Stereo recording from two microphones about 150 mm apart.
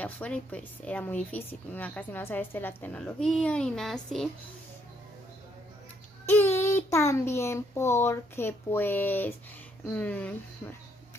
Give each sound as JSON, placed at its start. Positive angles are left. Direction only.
{"t": 0.0, "sound": "speech", "side_deg": 10}
{"t": 6.3, "sound": "speech", "side_deg": 15}